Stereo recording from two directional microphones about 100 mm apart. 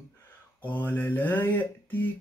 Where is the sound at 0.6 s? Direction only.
15° left (ahead or behind).